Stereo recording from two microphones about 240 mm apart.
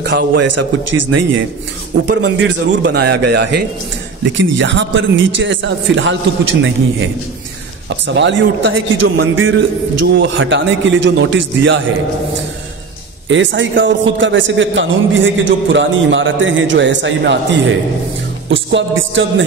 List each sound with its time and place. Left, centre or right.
0.0 s a man's voice: right
0.8 s speech: right
2.0 s a man's voice: right
8.1 s a man's voice: right
13.3 s a man's voice: right